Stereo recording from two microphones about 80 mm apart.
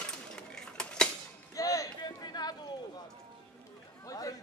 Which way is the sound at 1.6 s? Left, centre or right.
Left.